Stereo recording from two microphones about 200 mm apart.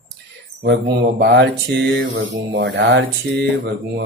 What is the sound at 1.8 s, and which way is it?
Mantra, 65° right (ahead or behind).